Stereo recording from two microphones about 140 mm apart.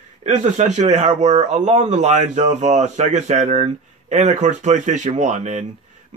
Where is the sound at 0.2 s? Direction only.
60° right (ahead or behind).